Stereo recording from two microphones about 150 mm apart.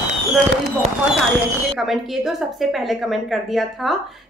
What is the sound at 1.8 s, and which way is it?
A woman's voice, centre (ahead or behind).